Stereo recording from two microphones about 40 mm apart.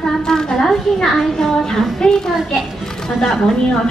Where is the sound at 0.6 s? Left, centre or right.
Centre.